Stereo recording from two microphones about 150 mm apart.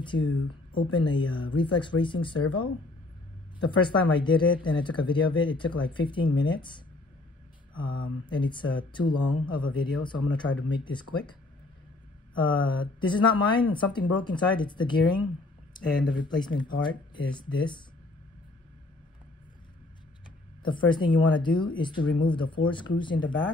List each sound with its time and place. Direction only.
0.0 s speech: 30° left (ahead or behind)
7.7 s speech: 30° left (ahead or behind)
12.4 s speech: 30° left (ahead or behind)
16.8 s speech: 30° left (ahead or behind)
20.6 s speech: 30° left (ahead or behind)